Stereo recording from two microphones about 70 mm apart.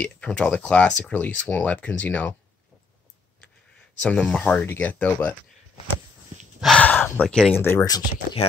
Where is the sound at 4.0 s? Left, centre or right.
Centre.